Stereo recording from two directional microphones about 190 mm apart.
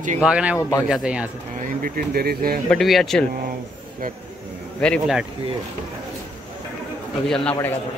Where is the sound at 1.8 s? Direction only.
55° right (ahead or behind).